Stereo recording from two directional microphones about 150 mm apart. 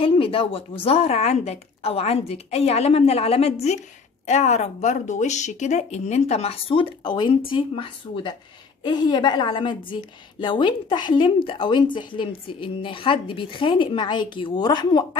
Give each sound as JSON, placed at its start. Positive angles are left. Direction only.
{"t": 0.0, "sound": "a woman's voice", "side_deg": 35}